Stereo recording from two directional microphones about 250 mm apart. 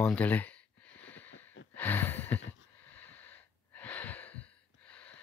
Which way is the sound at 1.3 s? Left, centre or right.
Left.